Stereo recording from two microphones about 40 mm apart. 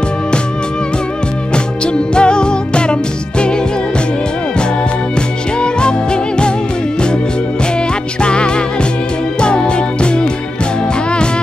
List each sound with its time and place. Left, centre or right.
1.5 s music: left
5.1 s music: left
8.2 s music: left